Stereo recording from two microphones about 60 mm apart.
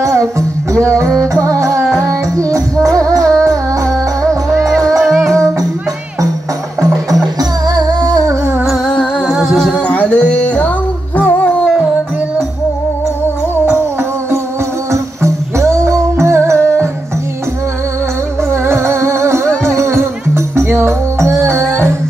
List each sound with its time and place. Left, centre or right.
0.0 s music: right
5.0 s music: centre
5.3 s music: right
7.3 s music: right
8.8 s music: centre
9.4 s humming: centre
9.7 s music: left
11.1 s a sound: left
14.9 s music: right
18.5 s music: right